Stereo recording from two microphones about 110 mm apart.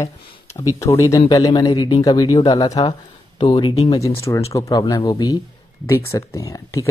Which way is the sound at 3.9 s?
30° left (ahead or behind).